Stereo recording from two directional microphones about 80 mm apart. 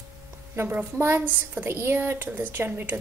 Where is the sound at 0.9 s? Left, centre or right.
Right.